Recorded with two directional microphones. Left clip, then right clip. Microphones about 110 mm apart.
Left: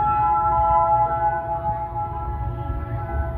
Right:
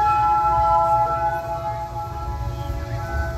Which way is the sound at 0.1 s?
20° right (ahead or behind).